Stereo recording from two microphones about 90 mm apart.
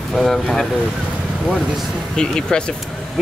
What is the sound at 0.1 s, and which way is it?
Speech, centre (ahead or behind).